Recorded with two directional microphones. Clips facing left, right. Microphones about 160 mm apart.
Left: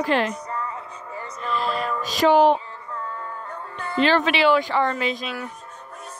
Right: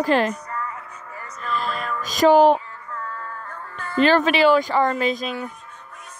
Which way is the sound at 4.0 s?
45° right (ahead or behind).